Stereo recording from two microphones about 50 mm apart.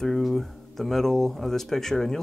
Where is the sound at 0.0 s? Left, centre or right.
Centre.